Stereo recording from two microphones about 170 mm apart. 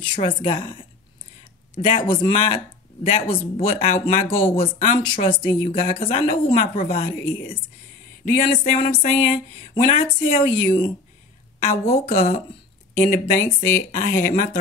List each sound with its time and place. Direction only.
0.0 s a woman's voice: 30° left (ahead or behind)
1.8 s speech: 30° left (ahead or behind)
5.0 s speech: 30° left (ahead or behind)
6.5 s speech: 50° left (ahead or behind)
6.9 s speech: 40° left (ahead or behind)
8.3 s speech: 50° left (ahead or behind)